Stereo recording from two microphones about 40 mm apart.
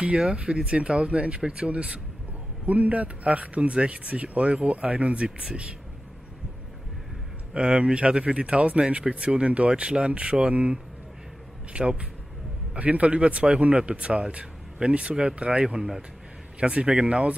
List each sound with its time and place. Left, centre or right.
0.0 s speech: right
7.5 s speech: right
16.5 s speech: right